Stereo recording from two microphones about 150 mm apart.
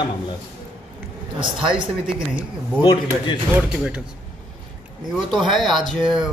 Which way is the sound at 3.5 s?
5° right (ahead or behind).